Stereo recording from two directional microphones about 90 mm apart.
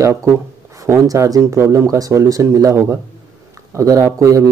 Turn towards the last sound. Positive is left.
turn(degrees=-40)  # may be behind; listen again after turning